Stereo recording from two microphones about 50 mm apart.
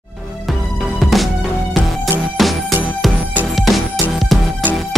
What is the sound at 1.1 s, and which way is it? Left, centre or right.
Music, centre.